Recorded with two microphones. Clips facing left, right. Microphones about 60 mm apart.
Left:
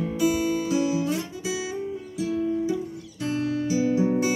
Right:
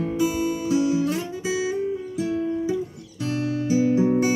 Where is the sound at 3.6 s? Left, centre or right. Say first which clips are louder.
Right 5 dB; right.